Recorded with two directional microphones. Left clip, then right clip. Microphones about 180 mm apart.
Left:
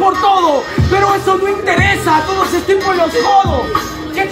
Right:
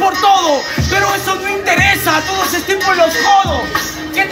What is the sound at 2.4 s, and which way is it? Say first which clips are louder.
Speech: left 2 dB; 15° right (ahead or behind).